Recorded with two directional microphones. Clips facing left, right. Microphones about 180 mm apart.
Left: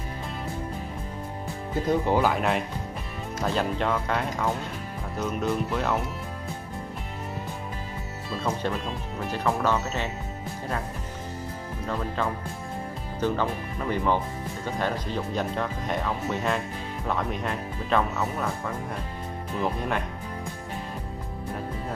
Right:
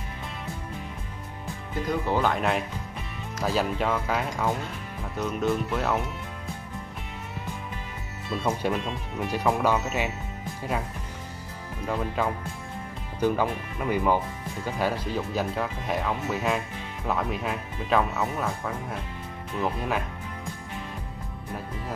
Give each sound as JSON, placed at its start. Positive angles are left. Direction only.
{"t": 1.9, "sound": "speech", "side_deg": 15}
{"t": 2.3, "sound": "speech", "side_deg": 0}
{"t": 8.3, "sound": "speech", "side_deg": -5}
{"t": 11.9, "sound": "speech", "side_deg": -10}